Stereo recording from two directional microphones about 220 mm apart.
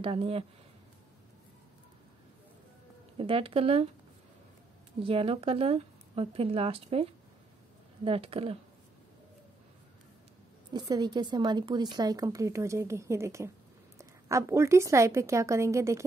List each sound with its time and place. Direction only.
0.0 s speech: 25° right (ahead or behind)
3.2 s speech: 25° right (ahead or behind)
5.0 s speech: 25° right (ahead or behind)
10.7 s a woman's voice: 20° right (ahead or behind)